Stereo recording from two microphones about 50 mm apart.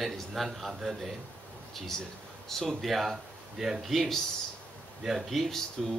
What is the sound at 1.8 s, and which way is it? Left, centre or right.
Speech, centre.